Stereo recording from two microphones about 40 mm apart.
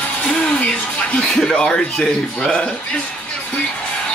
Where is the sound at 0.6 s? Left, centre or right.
Left.